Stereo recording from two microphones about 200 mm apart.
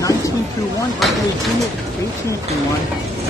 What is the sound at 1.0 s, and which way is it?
Speech, centre (ahead or behind).